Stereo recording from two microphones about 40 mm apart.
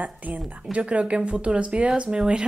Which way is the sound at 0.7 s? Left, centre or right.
Right.